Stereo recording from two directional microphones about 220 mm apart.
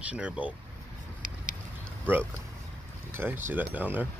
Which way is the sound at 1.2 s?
40° right (ahead or behind).